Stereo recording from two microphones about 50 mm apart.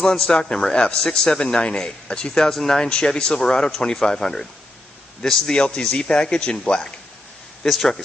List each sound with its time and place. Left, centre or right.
0.0 s speech: centre
5.5 s speech: centre
7.6 s speech: centre